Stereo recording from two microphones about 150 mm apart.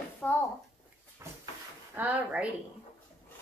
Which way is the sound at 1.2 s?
20° right (ahead or behind).